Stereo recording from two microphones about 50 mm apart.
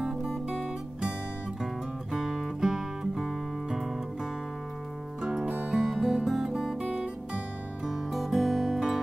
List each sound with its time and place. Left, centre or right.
0.0 s guitar: centre
0.5 s music: centre
2.1 s music: centre
5.2 s music: centre
5.7 s music: centre